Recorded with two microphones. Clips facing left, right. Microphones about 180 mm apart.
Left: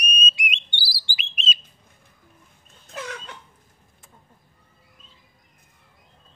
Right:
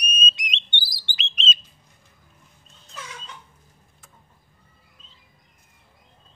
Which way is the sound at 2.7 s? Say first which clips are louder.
Left 7 dB; 60° left (ahead or behind).